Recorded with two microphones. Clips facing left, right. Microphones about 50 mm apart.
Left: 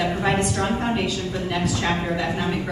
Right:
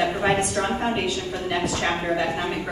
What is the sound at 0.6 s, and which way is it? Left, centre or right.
A woman's voice, centre.